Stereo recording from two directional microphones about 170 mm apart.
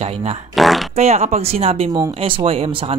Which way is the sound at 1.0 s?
40° right (ahead or behind).